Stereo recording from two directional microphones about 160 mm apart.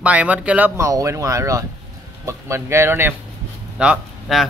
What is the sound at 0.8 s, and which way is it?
Speech, 20° right (ahead or behind).